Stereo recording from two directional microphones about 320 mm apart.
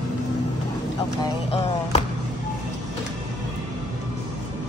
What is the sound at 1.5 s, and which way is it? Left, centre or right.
Music, centre.